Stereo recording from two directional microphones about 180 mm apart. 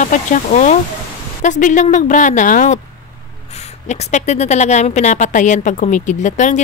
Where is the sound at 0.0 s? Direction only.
45° left (ahead or behind).